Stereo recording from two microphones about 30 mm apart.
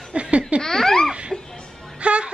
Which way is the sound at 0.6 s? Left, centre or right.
Centre.